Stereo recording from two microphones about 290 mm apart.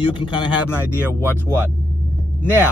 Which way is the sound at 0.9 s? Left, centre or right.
Centre.